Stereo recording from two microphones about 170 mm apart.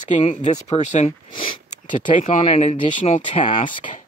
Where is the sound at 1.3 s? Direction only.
55° left (ahead or behind).